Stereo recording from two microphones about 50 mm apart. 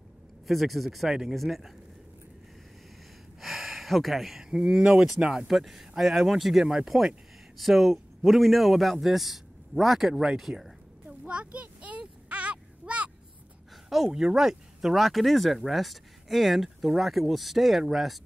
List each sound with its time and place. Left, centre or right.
0.5 s speech: centre
3.3 s a sound: centre
4.4 s speech: centre
5.5 s speech: centre
7.5 s speech: centre
11.1 s a sound: right
13.8 s speech: centre